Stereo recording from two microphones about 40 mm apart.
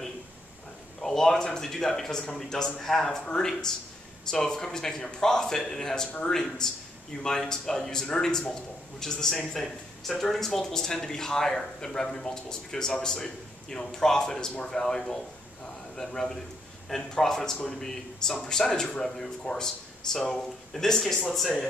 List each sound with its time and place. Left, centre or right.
1.0 s speech: centre